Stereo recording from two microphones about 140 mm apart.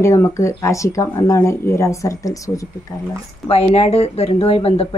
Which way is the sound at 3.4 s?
45° left (ahead or behind).